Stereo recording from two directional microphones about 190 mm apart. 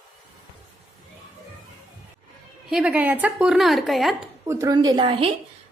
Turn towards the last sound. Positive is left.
turn(degrees=-25)  # may be behind; listen again after turning